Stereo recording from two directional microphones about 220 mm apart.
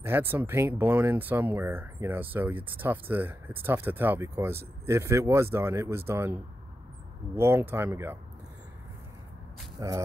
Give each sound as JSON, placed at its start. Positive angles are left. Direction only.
{"t": 0.0, "sound": "speech", "side_deg": -10}
{"t": 7.3, "sound": "speech", "side_deg": -10}
{"t": 9.8, "sound": "speech", "side_deg": -15}